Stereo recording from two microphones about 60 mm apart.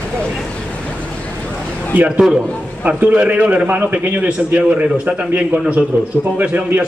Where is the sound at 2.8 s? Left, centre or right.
Right.